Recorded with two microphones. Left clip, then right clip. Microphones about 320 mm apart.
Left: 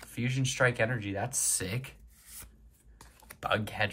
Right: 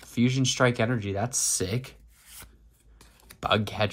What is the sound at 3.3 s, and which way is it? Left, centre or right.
Speech, centre.